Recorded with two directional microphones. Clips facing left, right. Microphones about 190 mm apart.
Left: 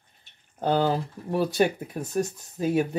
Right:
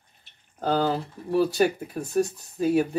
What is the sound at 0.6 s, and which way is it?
Speech, 20° left (ahead or behind).